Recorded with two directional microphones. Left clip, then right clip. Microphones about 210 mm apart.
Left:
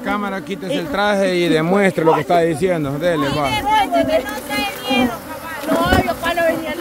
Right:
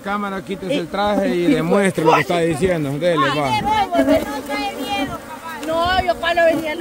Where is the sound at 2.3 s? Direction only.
5° right (ahead or behind).